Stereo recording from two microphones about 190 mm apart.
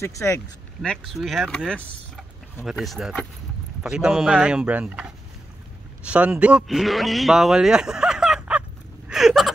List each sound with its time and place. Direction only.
0.0 s speech: 15° left (ahead or behind)
0.8 s a man's voice: centre (ahead or behind)
9.1 s a sound: centre (ahead or behind)